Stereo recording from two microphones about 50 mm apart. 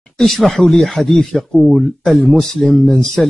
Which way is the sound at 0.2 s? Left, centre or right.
Centre.